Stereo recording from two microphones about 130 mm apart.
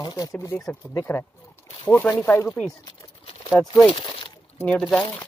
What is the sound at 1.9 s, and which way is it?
Speech, 15° left (ahead or behind).